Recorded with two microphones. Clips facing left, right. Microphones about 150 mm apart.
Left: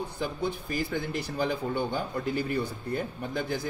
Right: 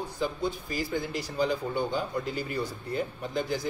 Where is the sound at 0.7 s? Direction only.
55° left (ahead or behind).